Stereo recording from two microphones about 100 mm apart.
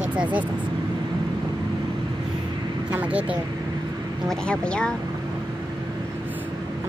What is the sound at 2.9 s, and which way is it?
Speech, 15° right (ahead or behind).